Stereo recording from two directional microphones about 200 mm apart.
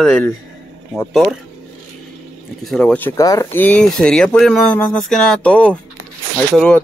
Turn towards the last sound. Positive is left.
turn(degrees=5)  # may be behind; listen again after turning